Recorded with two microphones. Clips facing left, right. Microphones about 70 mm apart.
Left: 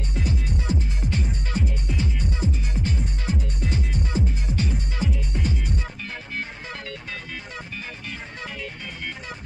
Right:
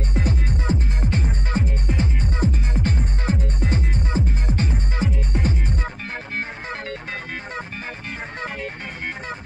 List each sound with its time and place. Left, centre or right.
0.1 s music: right